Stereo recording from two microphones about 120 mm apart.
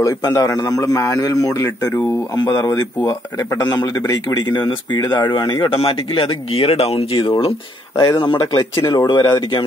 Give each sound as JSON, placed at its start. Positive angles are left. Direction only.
{"t": 0.0, "sound": "a man's voice", "side_deg": 30}
{"t": 5.8, "sound": "speech", "side_deg": 50}